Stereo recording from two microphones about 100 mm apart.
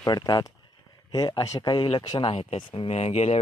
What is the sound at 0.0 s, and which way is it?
Speech, 40° left (ahead or behind).